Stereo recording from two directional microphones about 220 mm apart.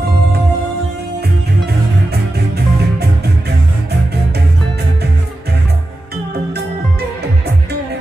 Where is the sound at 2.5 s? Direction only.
45° right (ahead or behind).